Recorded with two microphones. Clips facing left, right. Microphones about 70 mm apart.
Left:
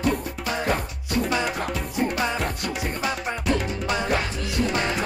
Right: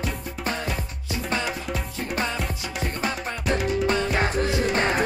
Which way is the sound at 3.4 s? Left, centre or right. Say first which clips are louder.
Even; centre.